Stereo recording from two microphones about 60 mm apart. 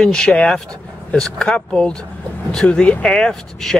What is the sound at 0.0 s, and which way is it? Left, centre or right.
Speech, centre.